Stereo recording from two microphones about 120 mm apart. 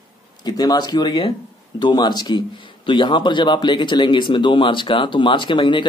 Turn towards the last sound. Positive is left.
turn(degrees=40)  # may be behind; listen again after turning